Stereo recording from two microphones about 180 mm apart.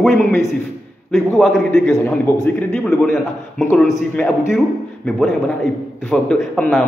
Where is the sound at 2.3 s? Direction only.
10° left (ahead or behind).